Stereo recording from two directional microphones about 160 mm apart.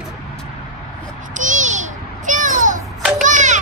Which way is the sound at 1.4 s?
50° right (ahead or behind).